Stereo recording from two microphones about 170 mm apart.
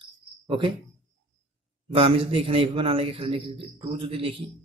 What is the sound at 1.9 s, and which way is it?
A man's voice, 35° right (ahead or behind).